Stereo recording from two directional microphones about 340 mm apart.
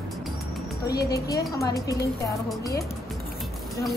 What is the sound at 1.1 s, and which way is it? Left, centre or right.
A woman's voice, centre.